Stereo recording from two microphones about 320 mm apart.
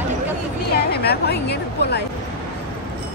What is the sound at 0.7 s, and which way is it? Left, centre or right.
A woman's voice, left.